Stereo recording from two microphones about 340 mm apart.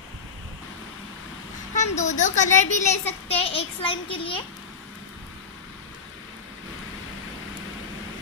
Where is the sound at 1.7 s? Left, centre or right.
Centre.